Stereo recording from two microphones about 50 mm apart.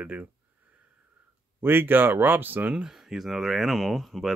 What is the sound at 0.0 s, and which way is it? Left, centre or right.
Speech, right.